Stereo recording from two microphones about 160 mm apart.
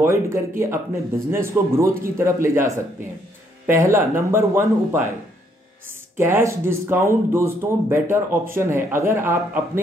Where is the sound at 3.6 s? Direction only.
15° right (ahead or behind).